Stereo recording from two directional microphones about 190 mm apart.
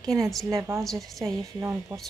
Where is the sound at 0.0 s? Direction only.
20° right (ahead or behind).